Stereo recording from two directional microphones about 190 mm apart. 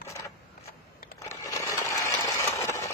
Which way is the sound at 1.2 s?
15° left (ahead or behind).